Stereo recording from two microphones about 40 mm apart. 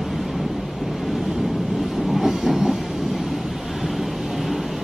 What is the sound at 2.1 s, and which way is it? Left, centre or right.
Train, centre.